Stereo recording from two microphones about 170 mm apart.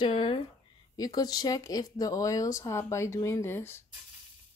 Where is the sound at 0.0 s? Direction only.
30° left (ahead or behind); by 3.8 s 15° left (ahead or behind).